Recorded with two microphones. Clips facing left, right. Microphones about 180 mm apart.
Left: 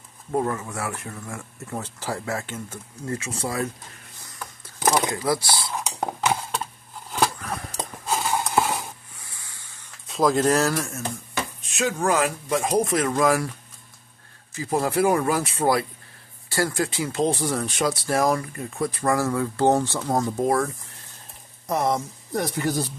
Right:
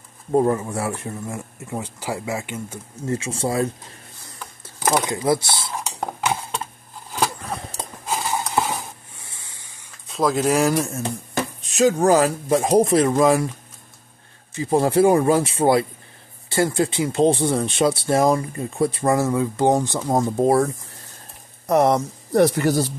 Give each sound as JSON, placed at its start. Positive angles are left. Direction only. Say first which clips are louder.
{"t": 0.3, "sound": "speech", "louder": "right 7 dB", "side_deg": -30}
{"t": 1.7, "sound": "speech", "louder": "right 2 dB", "side_deg": -10}
{"t": 3.1, "sound": "speech", "louder": "right 5 dB", "side_deg": -30}
{"t": 4.9, "sound": "speech", "louder": "right 6 dB", "side_deg": -20}
{"t": 5.9, "sound": "stir", "louder": "even", "side_deg": 0}
{"t": 8.1, "sound": "a sound", "louder": "even", "side_deg": 0}
{"t": 9.2, "sound": "spray", "louder": "right 2 dB", "side_deg": -25}
{"t": 10.0, "sound": "speech", "louder": "even", "side_deg": 0}
{"t": 11.3, "sound": "speech", "louder": "right 8 dB", "side_deg": -35}
{"t": 14.5, "sound": "speech", "louder": "right 5 dB", "side_deg": -30}
{"t": 21.6, "sound": "speech", "louder": "right 7 dB", "side_deg": -65}